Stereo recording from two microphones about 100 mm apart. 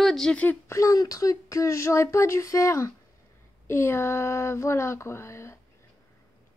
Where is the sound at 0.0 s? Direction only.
5° left (ahead or behind).